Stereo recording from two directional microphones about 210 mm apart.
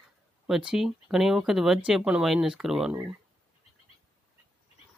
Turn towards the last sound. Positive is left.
turn(degrees=-5)  # may be behind; listen again after turning